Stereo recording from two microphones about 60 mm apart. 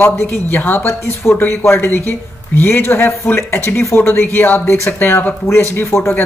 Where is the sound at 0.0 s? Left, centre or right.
Left.